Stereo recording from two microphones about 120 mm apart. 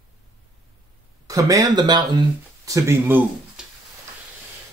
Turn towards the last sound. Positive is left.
turn(degrees=-5)  # may be behind; listen again after turning